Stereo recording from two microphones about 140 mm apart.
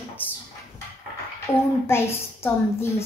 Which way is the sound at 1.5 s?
15° left (ahead or behind).